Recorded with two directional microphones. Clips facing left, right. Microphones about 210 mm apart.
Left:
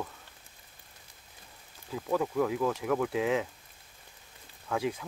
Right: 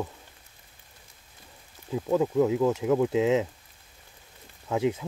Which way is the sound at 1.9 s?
20° right (ahead or behind).